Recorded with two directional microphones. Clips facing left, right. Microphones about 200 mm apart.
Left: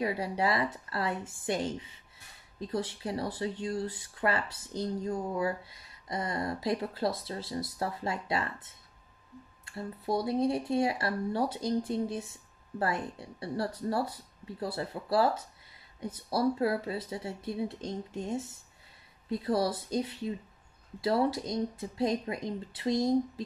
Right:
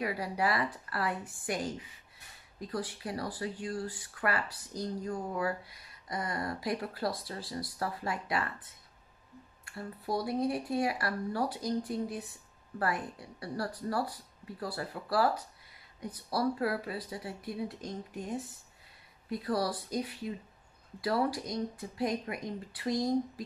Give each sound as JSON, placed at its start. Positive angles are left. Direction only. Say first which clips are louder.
{"t": 0.0, "sound": "speech", "louder": "left 2 dB", "side_deg": 25}
{"t": 9.7, "sound": "speech", "louder": "left 3 dB", "side_deg": 25}